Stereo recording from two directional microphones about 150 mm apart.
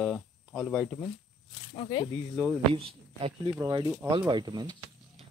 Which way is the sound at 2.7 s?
40° right (ahead or behind).